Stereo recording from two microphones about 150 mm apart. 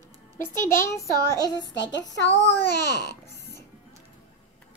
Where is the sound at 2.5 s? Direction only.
90° left.